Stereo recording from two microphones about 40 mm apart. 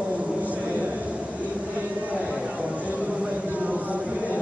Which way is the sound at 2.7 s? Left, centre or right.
Right.